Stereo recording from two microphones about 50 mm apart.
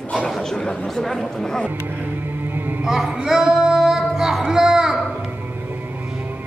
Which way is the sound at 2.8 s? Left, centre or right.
Centre.